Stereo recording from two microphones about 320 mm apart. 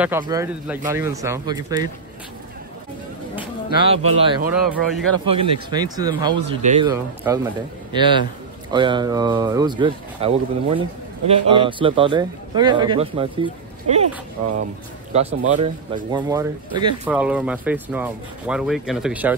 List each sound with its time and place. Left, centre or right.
0.0 s a man's voice: centre
3.3 s a sound: centre
4.5 s speech: centre
5.2 s a man's voice: centre
15.1 s speech: centre